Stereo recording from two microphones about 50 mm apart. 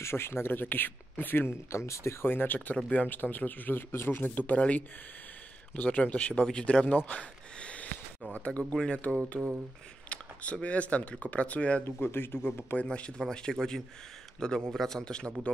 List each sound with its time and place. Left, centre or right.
0.0 s speech: left
2.2 s speech: left
3.9 s speech: left
4.6 s a man's voice: left
7.1 s a sound: left
8.4 s a man's voice: left
9.3 s speech: centre
10.0 s speech: left
11.8 s speech: left
12.8 s a man's voice: left